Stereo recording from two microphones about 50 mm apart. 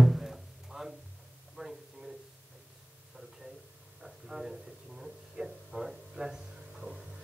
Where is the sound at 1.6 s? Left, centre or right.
Centre.